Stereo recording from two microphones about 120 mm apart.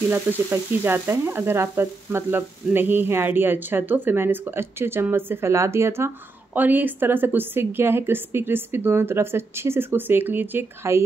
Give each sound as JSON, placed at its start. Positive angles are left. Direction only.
{"t": 0.5, "sound": "speech", "side_deg": -20}